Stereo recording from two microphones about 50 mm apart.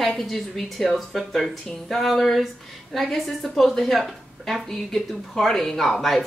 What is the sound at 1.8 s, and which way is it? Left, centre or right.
A woman's voice, centre.